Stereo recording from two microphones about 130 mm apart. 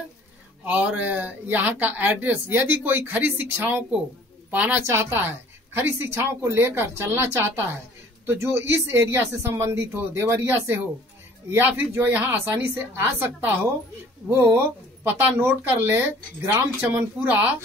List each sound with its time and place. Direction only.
0.7 s speech: 10° right (ahead or behind)